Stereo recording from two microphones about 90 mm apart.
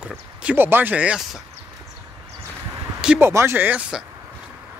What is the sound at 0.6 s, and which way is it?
Speech, 25° right (ahead or behind).